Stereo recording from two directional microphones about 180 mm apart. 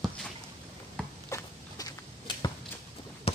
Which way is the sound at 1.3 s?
20° left (ahead or behind).